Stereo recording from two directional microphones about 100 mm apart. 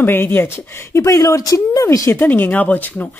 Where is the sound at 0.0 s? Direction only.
20° left (ahead or behind).